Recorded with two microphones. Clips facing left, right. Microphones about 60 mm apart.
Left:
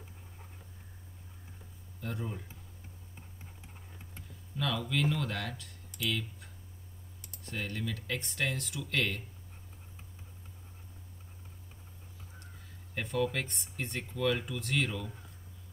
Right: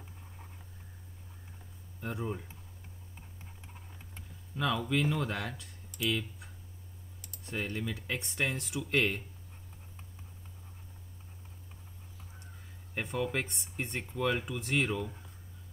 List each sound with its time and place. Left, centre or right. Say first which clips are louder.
2.0 s speech: right 3 dB; centre
4.6 s speech: right 2 dB; centre
7.4 s speech: right 2 dB; centre
12.9 s speech: left 1 dB; centre